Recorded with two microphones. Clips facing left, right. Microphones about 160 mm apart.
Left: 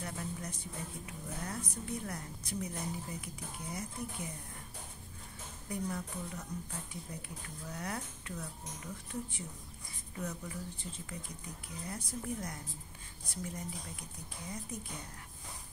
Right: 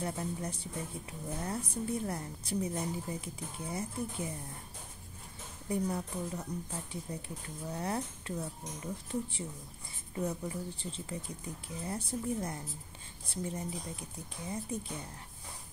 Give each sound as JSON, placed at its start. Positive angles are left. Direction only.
{"t": 0.0, "sound": "speech", "side_deg": -30}
{"t": 5.7, "sound": "speech", "side_deg": -30}